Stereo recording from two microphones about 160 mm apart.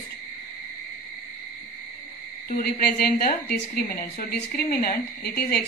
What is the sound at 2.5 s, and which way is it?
A woman's voice, 75° left (ahead or behind).